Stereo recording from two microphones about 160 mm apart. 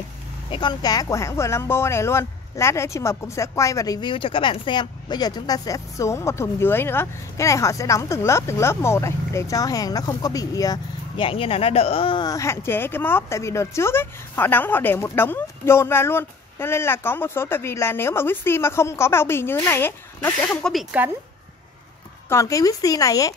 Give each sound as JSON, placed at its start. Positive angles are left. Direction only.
{"t": 0.5, "sound": "speech", "side_deg": 30}
{"t": 20.6, "sound": "speech", "side_deg": 5}
{"t": 22.3, "sound": "speech", "side_deg": 20}